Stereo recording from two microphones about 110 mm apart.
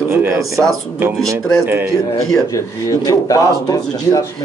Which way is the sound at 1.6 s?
20° right (ahead or behind).